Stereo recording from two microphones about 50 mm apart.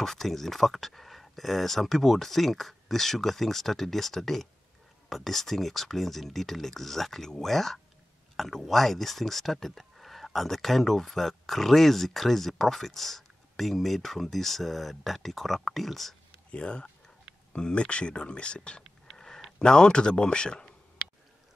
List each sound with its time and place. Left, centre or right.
0.0 s speech: centre
16.5 s speech: centre
19.0 s a sound: centre
19.6 s speech: centre